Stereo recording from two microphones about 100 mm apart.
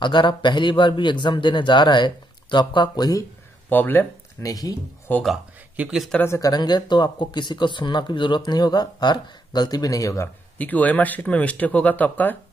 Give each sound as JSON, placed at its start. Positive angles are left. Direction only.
{"t": 0.0, "sound": "speech", "side_deg": 50}
{"t": 3.6, "sound": "speech", "side_deg": 20}
{"t": 4.4, "sound": "speech", "side_deg": 35}
{"t": 5.1, "sound": "speech", "side_deg": 15}
{"t": 5.8, "sound": "speech", "side_deg": -10}
{"t": 6.2, "sound": "speech", "side_deg": 30}
{"t": 6.5, "sound": "speech", "side_deg": 45}
{"t": 10.6, "sound": "speech", "side_deg": 15}